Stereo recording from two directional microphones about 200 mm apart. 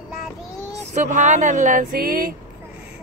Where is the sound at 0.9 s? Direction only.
35° right (ahead or behind).